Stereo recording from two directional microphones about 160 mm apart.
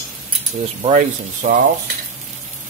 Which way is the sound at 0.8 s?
50° right (ahead or behind).